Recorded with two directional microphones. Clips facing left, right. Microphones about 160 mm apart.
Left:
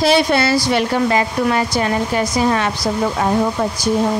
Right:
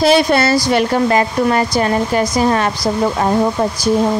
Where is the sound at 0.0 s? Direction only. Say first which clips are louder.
Right 2 dB; 45° right (ahead or behind).